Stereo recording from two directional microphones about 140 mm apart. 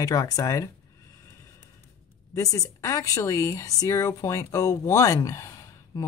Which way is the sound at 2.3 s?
20° left (ahead or behind).